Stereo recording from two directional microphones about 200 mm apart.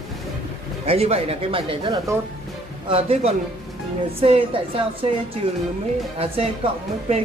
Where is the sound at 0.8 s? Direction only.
30° right (ahead or behind).